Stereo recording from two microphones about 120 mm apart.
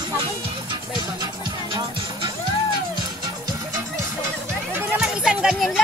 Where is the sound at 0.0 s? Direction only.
40° right (ahead or behind).